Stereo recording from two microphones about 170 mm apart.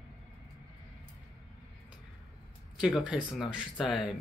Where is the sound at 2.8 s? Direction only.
5° right (ahead or behind).